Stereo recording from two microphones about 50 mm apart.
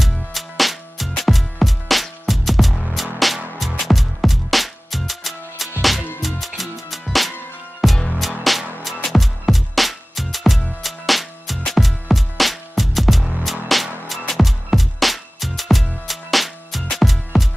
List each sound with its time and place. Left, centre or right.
0.0 s music: centre